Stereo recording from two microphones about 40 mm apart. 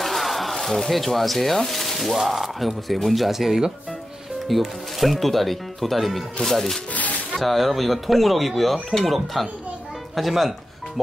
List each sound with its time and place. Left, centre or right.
0.0 s speech: centre
4.5 s speech: centre
6.9 s music: left
7.3 s speech: centre